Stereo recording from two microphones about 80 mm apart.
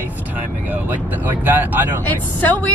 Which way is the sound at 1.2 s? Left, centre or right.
Right.